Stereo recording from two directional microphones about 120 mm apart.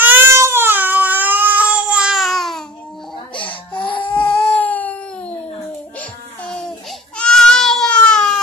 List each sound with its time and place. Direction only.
0.0 s baby cry: 15° right (ahead or behind); by 2.6 s centre (ahead or behind)
3.3 s baby cry: 45° left (ahead or behind)
4.5 s a sound: 15° left (ahead or behind)
5.9 s music: 10° left (ahead or behind)
7.2 s goat: 5° left (ahead or behind)